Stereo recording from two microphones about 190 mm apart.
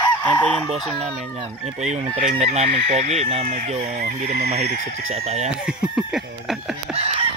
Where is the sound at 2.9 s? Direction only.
35° right (ahead or behind).